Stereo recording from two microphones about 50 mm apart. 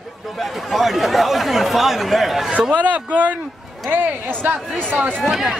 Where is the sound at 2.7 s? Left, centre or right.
Right.